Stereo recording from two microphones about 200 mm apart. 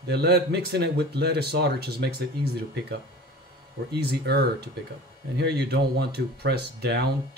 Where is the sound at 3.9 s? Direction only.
55° right (ahead or behind).